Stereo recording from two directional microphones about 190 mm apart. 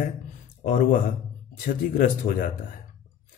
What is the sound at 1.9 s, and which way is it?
Speech, 45° left (ahead or behind).